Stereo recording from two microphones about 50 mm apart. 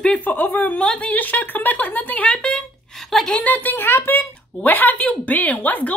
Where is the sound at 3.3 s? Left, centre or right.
Left.